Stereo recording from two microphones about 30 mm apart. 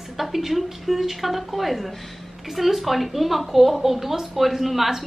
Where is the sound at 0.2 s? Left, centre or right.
Centre.